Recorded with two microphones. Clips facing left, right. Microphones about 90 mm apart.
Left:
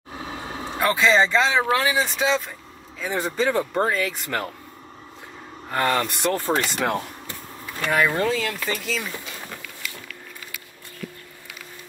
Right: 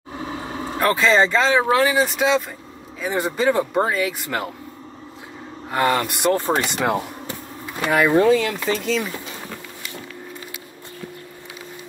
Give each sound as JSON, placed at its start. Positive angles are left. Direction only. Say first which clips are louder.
{"t": 0.2, "sound": "vehicle", "louder": "right 4 dB", "side_deg": -20}
{"t": 0.7, "sound": "a man's voice", "louder": "right 2 dB", "side_deg": 0}
{"t": 5.7, "sound": "a man's voice", "louder": "right 3 dB", "side_deg": -10}
{"t": 6.8, "sound": "a sound", "louder": "right 3 dB", "side_deg": -10}
{"t": 7.9, "sound": "speech", "louder": "right 6 dB", "side_deg": -5}
{"t": 9.1, "sound": "a sound", "louder": "right 3 dB", "side_deg": -15}